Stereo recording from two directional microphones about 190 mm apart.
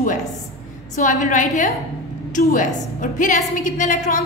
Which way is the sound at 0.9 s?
40° left (ahead or behind).